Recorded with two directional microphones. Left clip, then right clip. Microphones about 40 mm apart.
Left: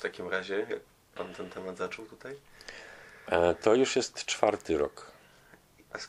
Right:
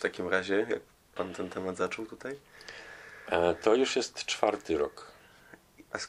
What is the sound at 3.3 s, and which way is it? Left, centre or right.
Speech, left.